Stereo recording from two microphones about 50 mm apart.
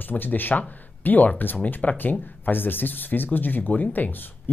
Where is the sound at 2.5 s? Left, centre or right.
Left.